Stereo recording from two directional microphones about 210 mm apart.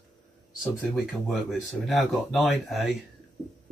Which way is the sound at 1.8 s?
Centre (ahead or behind).